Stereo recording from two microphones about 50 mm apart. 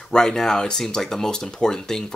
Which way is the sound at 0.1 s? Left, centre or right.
Centre.